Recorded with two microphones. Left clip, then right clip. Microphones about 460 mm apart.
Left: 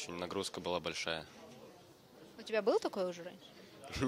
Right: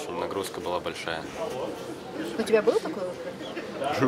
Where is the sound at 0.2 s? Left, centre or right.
Left.